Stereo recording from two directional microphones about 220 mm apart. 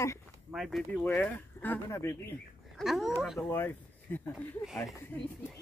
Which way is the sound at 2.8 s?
Centre (ahead or behind).